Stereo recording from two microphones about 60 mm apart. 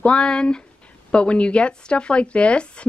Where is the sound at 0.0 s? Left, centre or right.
Centre.